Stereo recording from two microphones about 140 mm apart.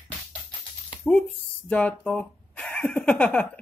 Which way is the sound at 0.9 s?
10° left (ahead or behind).